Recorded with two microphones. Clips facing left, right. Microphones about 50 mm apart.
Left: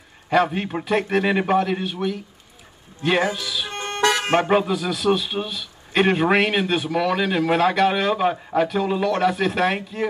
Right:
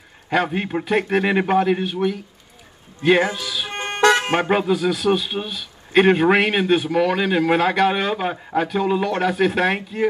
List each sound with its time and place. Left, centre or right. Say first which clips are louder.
0.3 s a man's voice: left 1 dB; centre
3.0 s speech: right 4 dB; right
3.5 s vehicle: right 1 dB; right
4.3 s speech: left 1 dB; right
4.6 s a man's voice: right 2 dB; centre